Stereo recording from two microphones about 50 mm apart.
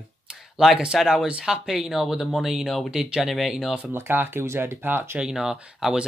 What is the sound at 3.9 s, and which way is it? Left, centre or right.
Speech, right.